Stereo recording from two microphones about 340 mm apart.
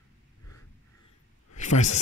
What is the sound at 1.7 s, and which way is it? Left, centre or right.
Speech, centre.